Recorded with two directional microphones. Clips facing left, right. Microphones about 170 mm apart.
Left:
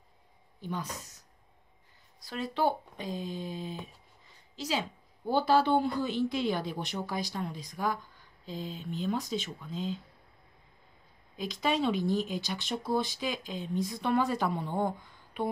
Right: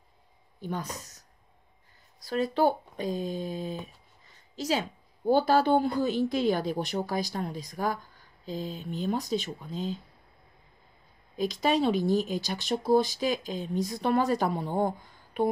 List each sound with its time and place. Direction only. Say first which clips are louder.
0.6 s speech: right 3 dB; 45° right (ahead or behind)
2.1 s a woman's voice: right 6 dB; 40° right (ahead or behind)
11.3 s a woman's voice: right 4 dB; 40° right (ahead or behind)